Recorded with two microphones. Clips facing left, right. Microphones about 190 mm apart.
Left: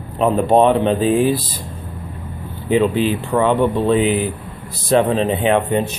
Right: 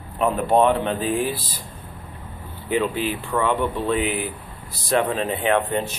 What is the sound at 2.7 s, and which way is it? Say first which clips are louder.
Speech: left 7 dB; 25° left (ahead or behind).